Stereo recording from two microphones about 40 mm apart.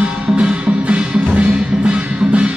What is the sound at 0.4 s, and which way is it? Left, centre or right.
Music, right.